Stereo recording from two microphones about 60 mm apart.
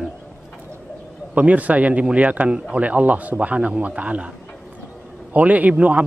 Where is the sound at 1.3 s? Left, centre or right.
Right.